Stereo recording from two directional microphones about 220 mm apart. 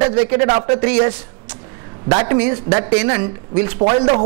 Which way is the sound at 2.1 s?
25° right (ahead or behind).